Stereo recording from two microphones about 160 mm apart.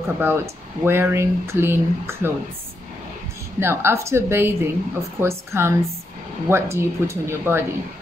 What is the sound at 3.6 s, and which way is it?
Speech, 15° right (ahead or behind).